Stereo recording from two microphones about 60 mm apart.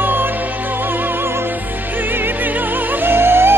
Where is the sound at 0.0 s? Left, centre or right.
Right.